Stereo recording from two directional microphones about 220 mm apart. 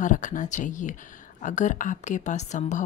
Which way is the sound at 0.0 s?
35° left (ahead or behind).